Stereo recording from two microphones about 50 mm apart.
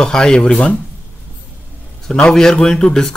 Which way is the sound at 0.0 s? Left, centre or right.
Centre.